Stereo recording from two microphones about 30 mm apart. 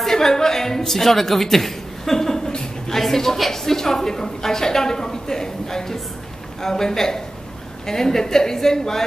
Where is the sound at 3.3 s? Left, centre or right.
Centre.